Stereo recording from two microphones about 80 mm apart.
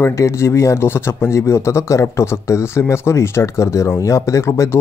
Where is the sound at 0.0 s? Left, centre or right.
Left.